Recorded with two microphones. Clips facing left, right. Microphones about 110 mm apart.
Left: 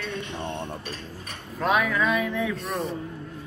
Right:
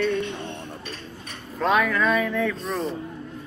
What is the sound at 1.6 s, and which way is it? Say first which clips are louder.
Speech: right 2 dB; 5° left (ahead or behind).